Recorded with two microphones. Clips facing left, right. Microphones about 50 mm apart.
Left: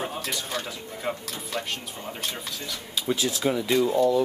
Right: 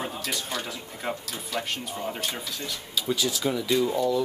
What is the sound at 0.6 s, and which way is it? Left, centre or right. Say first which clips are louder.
Speech: left 1 dB; centre.